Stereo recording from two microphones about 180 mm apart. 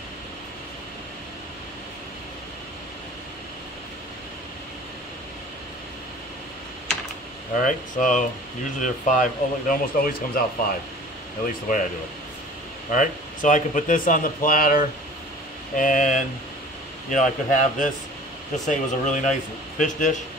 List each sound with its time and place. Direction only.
7.5 s speech: 45° left (ahead or behind)
11.7 s speech: 50° left (ahead or behind)
12.9 s speech: 45° left (ahead or behind)